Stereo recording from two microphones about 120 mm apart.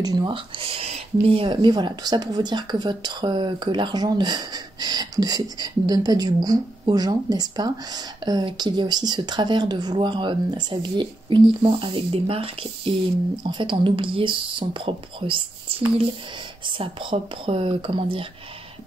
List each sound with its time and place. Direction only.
0.0 s speech: 35° right (ahead or behind)
0.3 s speech: 50° right (ahead or behind)
13.4 s speech: 40° right (ahead or behind)
16.6 s speech: 45° right (ahead or behind)